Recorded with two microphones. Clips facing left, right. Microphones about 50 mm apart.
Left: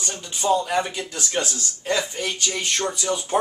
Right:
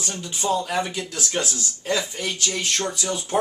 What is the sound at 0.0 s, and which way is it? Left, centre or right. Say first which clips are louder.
Speech: left 1 dB; centre.